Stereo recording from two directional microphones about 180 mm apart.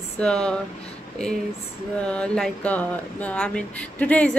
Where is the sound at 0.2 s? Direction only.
5° left (ahead or behind).